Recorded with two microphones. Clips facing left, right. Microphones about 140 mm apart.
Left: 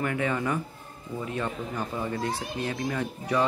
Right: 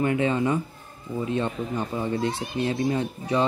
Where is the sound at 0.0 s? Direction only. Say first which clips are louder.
Right 5 dB; 20° right (ahead or behind).